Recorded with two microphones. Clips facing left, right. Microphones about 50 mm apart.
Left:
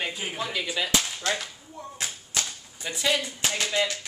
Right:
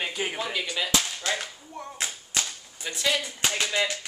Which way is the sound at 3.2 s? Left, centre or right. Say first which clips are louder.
Right 1 dB; right.